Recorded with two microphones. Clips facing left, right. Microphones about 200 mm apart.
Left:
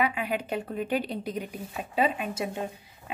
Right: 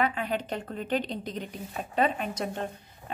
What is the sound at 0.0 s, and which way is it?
A woman's voice, 10° left (ahead or behind).